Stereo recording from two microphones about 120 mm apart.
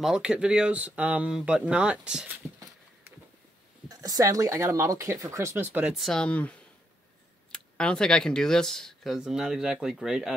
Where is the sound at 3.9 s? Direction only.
30° right (ahead or behind).